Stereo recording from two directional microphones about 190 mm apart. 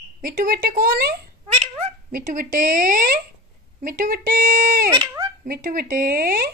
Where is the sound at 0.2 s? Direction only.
50° right (ahead or behind).